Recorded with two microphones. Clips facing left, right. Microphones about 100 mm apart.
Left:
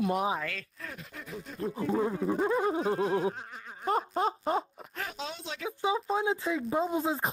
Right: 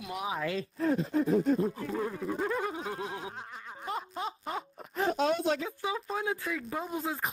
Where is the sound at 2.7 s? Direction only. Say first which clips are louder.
Left 9 dB; 30° left (ahead or behind).